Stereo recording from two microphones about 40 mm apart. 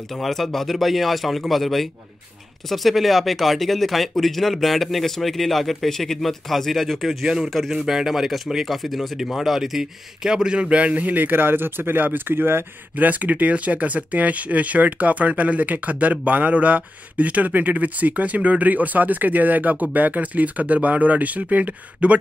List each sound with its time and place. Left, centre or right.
0.1 s speech: centre; by 12.6 s right
12.9 s speech: right